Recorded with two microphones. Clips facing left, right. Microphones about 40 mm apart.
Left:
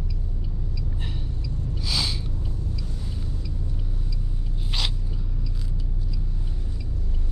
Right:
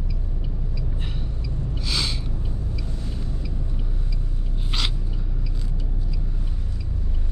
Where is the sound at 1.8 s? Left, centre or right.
Centre.